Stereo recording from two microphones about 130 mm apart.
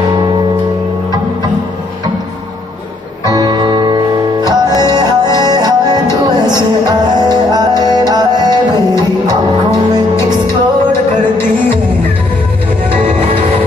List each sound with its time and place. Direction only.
3.3 s music: 30° right (ahead or behind)
10.1 s music: 20° left (ahead or behind)